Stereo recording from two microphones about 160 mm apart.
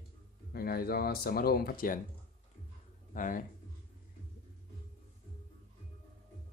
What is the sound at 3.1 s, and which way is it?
Speech, 60° left (ahead or behind).